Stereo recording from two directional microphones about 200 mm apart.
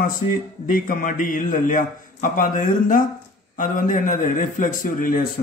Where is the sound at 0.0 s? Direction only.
45° left (ahead or behind).